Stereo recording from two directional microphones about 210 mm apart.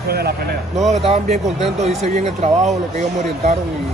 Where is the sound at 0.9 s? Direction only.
30° right (ahead or behind).